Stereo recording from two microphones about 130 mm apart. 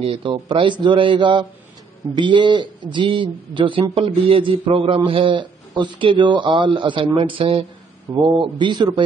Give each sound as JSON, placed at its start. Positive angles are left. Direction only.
{"t": 0.0, "sound": "a man's voice", "side_deg": -40}